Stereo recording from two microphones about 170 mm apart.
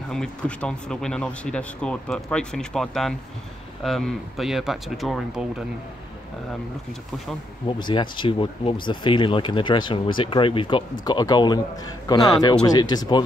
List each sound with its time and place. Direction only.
0.1 s speech: 5° left (ahead or behind)
7.6 s speech: 30° left (ahead or behind)